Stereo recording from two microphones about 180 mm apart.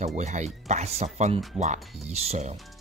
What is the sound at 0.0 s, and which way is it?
Speech, 40° right (ahead or behind).